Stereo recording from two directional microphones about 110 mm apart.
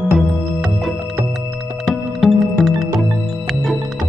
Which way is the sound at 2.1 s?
Centre (ahead or behind).